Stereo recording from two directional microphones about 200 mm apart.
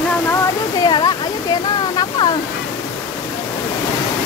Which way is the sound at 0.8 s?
20° left (ahead or behind).